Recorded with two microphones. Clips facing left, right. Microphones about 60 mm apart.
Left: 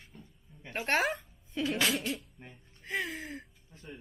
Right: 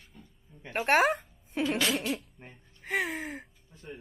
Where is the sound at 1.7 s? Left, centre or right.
Centre.